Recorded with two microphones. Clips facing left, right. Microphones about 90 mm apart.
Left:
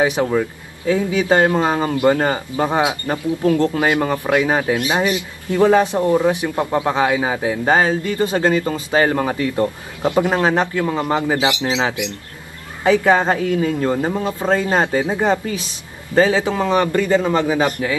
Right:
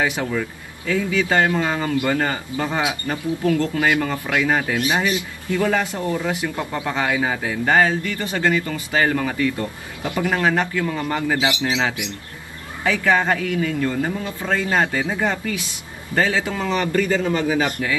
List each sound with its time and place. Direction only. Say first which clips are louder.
0.3 s a man's voice: left 6 dB; 30° left (ahead or behind)
11.0 s a man's voice: left 3 dB; 20° left (ahead or behind)